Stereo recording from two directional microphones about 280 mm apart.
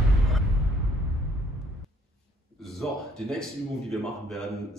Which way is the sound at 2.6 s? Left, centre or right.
Centre.